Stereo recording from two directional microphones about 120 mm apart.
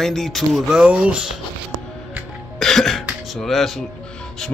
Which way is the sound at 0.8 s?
10° right (ahead or behind).